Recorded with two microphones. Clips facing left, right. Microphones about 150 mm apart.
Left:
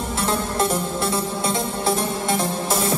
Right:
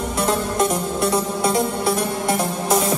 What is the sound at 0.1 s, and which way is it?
Music, 30° left (ahead or behind).